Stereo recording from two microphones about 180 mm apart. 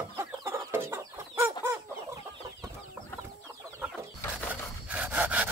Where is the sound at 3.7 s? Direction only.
15° right (ahead or behind).